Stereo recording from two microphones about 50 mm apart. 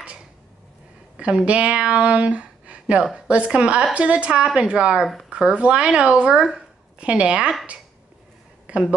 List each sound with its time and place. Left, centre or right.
1.1 s a woman's voice: right
8.7 s speech: right